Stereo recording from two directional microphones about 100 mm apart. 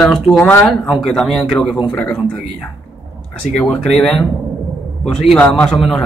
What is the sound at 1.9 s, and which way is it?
Speech, 15° left (ahead or behind).